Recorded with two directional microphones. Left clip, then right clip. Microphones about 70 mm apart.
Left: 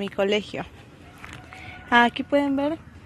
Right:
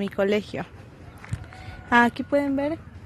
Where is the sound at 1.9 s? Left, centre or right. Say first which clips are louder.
Left 1 dB; centre.